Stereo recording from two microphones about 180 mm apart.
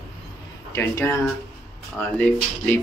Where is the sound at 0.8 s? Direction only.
15° left (ahead or behind).